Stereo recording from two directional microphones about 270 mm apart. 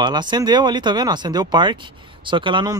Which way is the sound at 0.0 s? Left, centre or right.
Centre.